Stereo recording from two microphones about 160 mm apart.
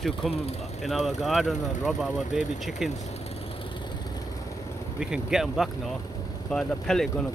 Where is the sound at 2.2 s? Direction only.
50° left (ahead or behind).